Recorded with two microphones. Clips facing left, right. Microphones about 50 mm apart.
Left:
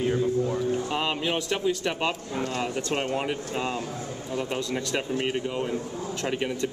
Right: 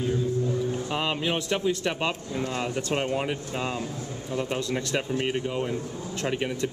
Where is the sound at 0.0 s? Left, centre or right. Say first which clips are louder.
Left 2 dB; left.